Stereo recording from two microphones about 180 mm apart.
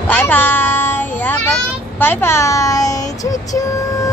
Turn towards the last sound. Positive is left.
turn(degrees=20)  # may be behind; listen again after turning